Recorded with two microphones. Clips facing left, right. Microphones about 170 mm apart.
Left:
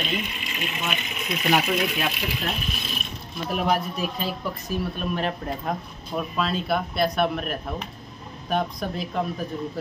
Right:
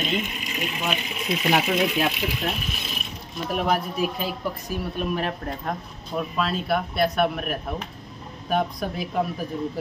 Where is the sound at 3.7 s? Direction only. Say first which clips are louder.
Right 1 dB; 5° right (ahead or behind).